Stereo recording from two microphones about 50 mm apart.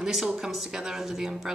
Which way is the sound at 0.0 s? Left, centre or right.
Centre.